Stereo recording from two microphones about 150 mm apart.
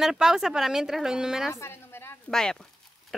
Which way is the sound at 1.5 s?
15° left (ahead or behind).